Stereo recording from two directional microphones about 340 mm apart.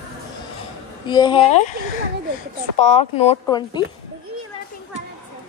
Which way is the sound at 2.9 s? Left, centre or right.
Centre.